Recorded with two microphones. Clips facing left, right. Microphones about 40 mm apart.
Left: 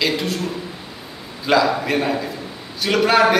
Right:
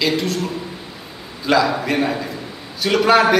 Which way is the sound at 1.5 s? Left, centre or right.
Centre.